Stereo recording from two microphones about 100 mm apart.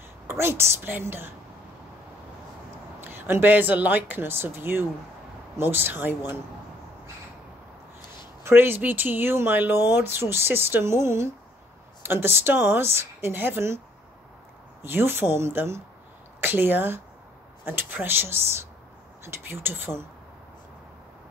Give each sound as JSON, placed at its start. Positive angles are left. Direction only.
{"t": 0.3, "sound": "speech", "side_deg": -25}
{"t": 3.0, "sound": "speech", "side_deg": -20}
{"t": 8.5, "sound": "speech", "side_deg": -20}
{"t": 14.8, "sound": "speech", "side_deg": -25}